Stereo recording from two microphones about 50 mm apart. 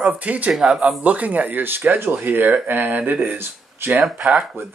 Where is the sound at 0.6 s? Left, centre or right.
Centre.